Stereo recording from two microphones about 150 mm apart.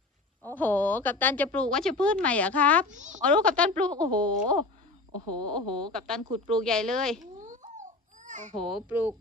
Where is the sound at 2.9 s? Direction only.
55° right (ahead or behind).